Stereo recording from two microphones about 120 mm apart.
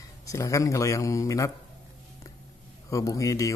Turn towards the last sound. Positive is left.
turn(degrees=25)  # may be behind; listen again after turning